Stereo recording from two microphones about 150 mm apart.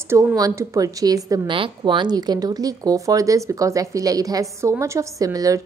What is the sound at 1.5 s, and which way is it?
A woman's voice, 35° right (ahead or behind).